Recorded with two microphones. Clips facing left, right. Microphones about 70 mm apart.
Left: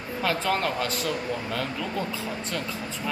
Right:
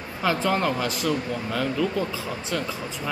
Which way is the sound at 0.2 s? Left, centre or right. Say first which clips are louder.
Right 3 dB; centre.